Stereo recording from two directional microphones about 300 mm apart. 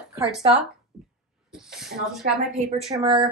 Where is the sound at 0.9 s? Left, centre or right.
Centre.